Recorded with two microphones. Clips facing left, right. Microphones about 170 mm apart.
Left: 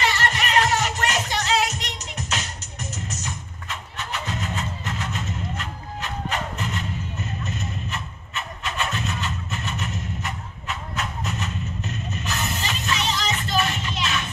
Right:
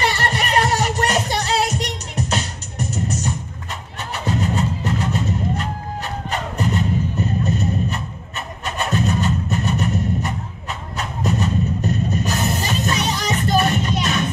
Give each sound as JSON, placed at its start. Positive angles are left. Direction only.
{"t": 0.1, "sound": "music", "side_deg": -35}